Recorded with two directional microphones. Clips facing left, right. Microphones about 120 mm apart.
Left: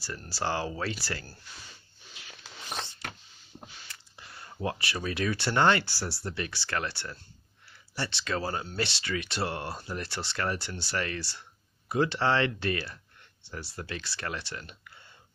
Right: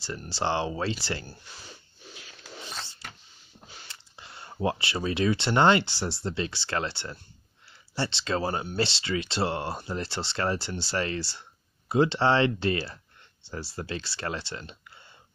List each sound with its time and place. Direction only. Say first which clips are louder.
0.3 s speech: right 3 dB; 25° right (ahead or behind)
3.9 s speech: right 2 dB; 25° right (ahead or behind)